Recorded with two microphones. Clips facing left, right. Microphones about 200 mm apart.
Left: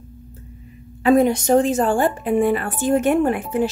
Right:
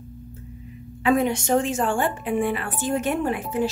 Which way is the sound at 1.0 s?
40° left (ahead or behind).